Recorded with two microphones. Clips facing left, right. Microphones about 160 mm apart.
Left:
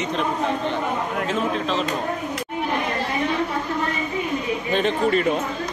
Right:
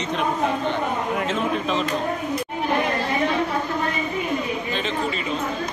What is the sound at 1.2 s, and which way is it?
Speech, centre (ahead or behind).